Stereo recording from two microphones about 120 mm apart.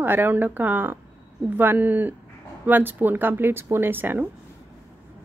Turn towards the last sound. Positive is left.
turn(degrees=-15)  # may be behind; listen again after turning